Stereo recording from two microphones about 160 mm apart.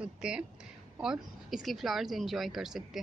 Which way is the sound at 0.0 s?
5° right (ahead or behind).